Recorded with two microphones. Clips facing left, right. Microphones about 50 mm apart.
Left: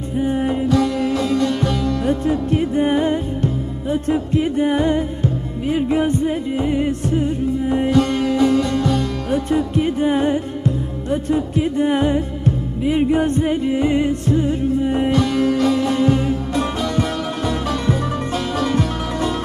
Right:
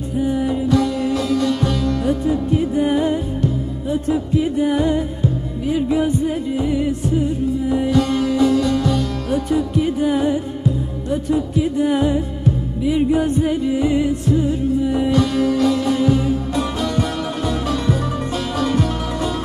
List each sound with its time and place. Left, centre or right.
0.2 s music: left
1.1 s sitar: centre
2.0 s music: left
6.9 s music: left
7.6 s music: left
8.1 s music: left
14.8 s music: left
15.2 s sitar: centre
15.9 s music: left
18.6 s music: centre